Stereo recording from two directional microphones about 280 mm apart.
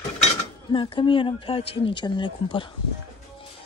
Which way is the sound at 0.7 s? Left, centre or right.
Centre.